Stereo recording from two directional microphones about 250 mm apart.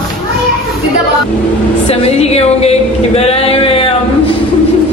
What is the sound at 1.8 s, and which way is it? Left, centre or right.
A woman's voice, left.